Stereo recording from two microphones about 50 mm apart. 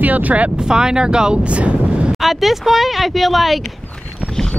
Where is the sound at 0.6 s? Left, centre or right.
Centre.